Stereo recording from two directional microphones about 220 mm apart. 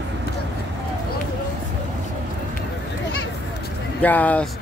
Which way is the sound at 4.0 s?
5° left (ahead or behind).